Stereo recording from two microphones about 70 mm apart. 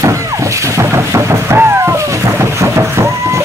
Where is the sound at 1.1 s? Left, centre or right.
Right.